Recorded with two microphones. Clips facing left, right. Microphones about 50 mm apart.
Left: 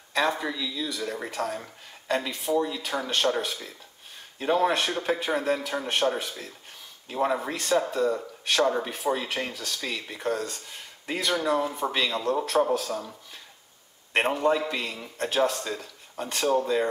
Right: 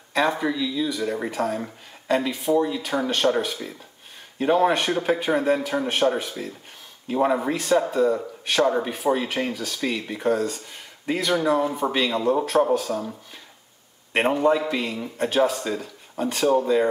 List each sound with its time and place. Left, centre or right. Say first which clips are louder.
0.1 s speech: right 4 dB; centre